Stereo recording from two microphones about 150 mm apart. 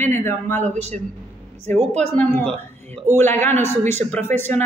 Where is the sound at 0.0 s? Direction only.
15° left (ahead or behind).